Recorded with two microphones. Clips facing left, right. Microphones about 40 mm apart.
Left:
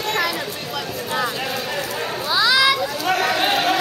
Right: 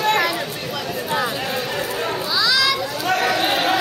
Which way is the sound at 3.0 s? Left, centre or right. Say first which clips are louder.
Right 2 dB; centre.